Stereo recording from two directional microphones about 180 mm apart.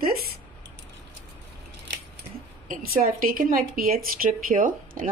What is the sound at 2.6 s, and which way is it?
A woman's voice, 55° right (ahead or behind).